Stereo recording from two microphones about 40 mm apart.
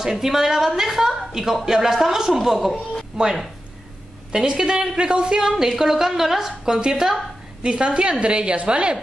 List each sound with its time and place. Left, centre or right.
0.0 s a woman's voice: centre
5.5 s a woman's voice: centre; by 8.9 s right